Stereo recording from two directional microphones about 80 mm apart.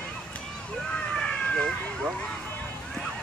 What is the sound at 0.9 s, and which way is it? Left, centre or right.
Vehicle, centre.